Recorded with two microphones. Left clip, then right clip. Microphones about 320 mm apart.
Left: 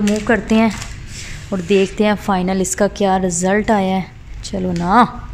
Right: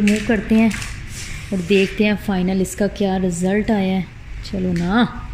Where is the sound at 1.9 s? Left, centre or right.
Left.